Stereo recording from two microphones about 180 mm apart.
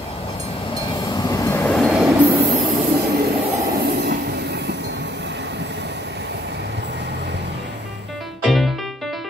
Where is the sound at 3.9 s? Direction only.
70° right (ahead or behind).